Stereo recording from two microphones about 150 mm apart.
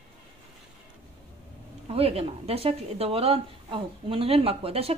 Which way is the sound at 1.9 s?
40° right (ahead or behind).